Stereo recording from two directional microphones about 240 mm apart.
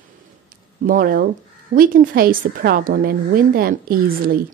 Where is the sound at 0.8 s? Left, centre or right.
Right.